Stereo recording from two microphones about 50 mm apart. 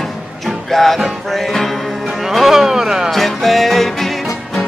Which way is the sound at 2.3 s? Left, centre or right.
Centre.